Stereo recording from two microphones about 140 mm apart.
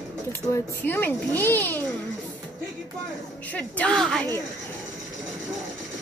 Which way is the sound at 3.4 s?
10° left (ahead or behind).